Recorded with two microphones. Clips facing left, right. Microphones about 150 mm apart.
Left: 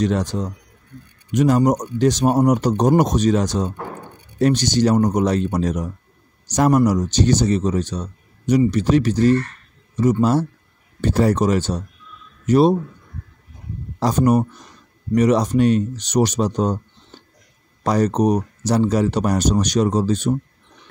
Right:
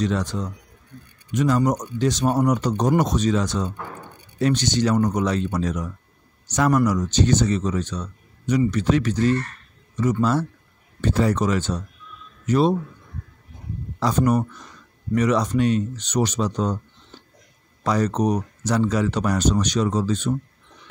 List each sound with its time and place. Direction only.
0.0 s speech: 45° left (ahead or behind)
11.0 s speech: 40° left (ahead or behind)
13.9 s speech: 40° left (ahead or behind)
17.8 s speech: 40° left (ahead or behind)